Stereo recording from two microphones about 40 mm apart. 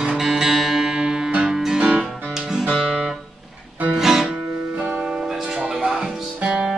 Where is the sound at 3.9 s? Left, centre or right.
Centre.